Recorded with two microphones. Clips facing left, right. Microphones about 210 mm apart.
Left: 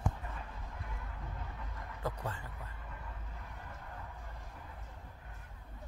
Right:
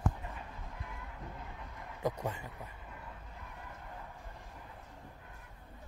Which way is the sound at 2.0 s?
20° right (ahead or behind).